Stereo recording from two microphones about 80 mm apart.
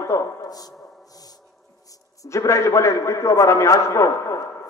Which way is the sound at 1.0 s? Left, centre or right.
Left.